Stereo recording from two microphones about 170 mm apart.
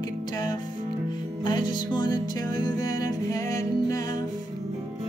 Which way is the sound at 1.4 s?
25° left (ahead or behind).